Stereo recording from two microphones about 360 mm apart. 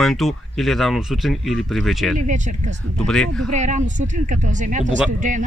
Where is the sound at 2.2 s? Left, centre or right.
Right.